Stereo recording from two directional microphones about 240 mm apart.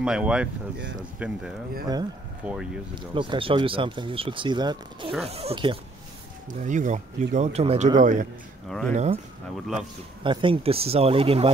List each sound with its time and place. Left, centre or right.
0.0 s speech: centre
2.4 s speech: centre
2.9 s a man's voice: centre
8.6 s speech: centre
8.9 s speech: right